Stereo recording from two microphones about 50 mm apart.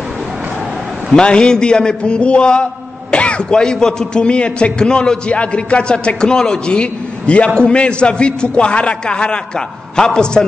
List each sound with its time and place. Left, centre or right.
1.1 s a man's voice: centre